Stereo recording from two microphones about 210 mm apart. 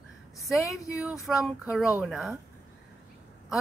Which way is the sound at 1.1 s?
Centre (ahead or behind).